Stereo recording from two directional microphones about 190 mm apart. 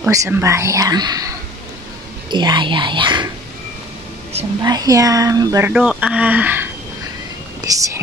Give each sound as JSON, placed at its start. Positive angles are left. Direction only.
{"t": 0.1, "sound": "speech", "side_deg": -15}
{"t": 2.3, "sound": "speech", "side_deg": -25}
{"t": 4.6, "sound": "speech", "side_deg": -20}
{"t": 5.7, "sound": "speech", "side_deg": -5}